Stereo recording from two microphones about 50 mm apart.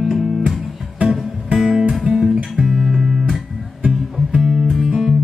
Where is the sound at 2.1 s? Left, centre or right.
Centre.